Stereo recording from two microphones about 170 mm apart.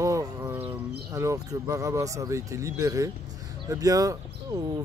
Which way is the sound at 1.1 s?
20° right (ahead or behind).